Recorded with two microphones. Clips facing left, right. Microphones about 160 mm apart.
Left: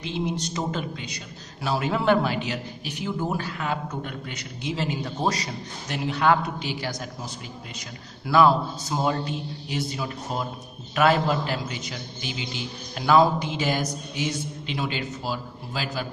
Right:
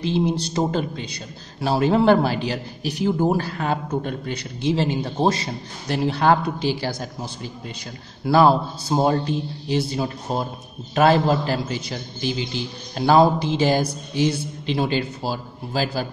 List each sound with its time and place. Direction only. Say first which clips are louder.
0.0 s a man's voice: right 7 dB; 30° right (ahead or behind)
8.3 s a man's voice: right 3 dB; 30° right (ahead or behind)